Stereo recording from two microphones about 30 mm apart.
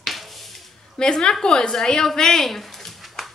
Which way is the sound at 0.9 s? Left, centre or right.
Left.